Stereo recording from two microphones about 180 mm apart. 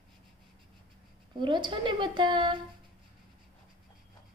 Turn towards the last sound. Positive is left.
turn(degrees=-25)  # may be behind; listen again after turning